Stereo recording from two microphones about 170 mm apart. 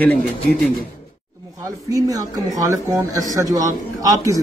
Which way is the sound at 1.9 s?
20° right (ahead or behind).